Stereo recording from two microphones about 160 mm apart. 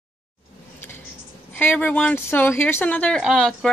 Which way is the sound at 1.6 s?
10° left (ahead or behind).